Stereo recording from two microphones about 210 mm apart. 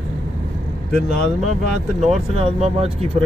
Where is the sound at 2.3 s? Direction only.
30° right (ahead or behind).